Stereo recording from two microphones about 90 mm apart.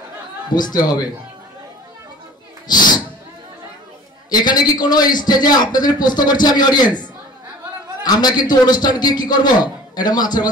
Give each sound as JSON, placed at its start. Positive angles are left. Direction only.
{"t": 0.6, "sound": "a man's voice", "side_deg": 50}
{"t": 2.7, "sound": "speech", "side_deg": 50}
{"t": 4.3, "sound": "a man's voice", "side_deg": 50}